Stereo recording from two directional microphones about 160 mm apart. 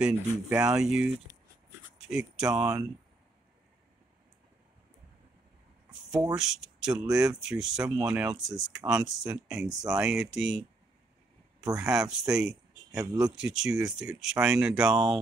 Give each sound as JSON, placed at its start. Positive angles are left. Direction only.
{"t": 0.0, "sound": "speech", "side_deg": -5}
{"t": 6.3, "sound": "speech", "side_deg": -5}
{"t": 11.7, "sound": "speech", "side_deg": -5}
{"t": 12.9, "sound": "speech", "side_deg": -25}
{"t": 13.4, "sound": "speech", "side_deg": -5}